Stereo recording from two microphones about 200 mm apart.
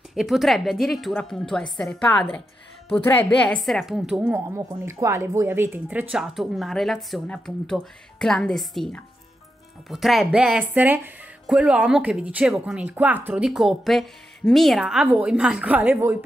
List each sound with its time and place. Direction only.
0.1 s speech: centre (ahead or behind)